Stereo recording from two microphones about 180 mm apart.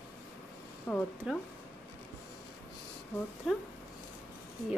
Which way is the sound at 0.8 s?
5° left (ahead or behind).